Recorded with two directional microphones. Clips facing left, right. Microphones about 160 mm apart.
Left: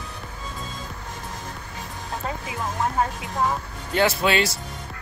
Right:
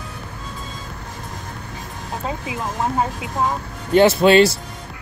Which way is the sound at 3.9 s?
30° right (ahead or behind).